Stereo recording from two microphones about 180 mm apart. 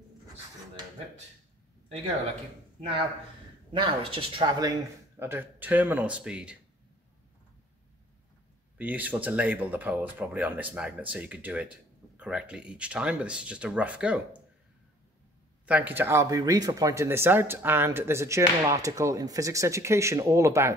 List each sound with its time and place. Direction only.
3.7 s speech: 30° right (ahead or behind)
5.2 s speech: 10° right (ahead or behind)
8.7 s speech: 10° right (ahead or behind)
15.6 s speech: 10° right (ahead or behind)